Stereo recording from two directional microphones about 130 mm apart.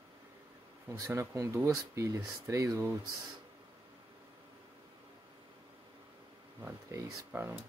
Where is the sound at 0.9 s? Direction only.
25° right (ahead or behind).